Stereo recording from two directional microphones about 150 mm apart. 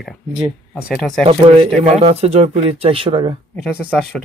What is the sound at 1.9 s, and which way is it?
Speech, 45° right (ahead or behind).